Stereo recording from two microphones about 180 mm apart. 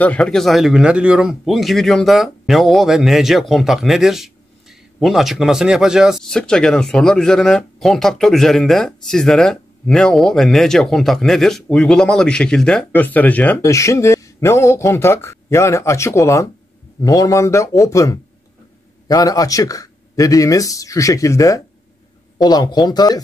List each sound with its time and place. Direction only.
0.0 s speech: 5° left (ahead or behind); by 23.2 s 20° left (ahead or behind)